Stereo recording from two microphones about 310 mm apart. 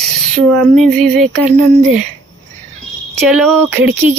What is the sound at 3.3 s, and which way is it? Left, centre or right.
Speech, centre.